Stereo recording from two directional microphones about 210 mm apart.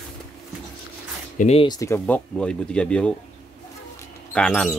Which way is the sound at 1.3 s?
30° left (ahead or behind).